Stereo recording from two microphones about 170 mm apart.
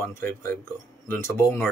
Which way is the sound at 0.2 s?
15° left (ahead or behind).